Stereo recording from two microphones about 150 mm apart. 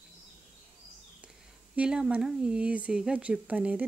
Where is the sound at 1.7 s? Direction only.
5° right (ahead or behind).